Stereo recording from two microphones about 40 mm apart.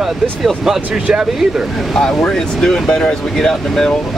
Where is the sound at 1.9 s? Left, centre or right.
Centre.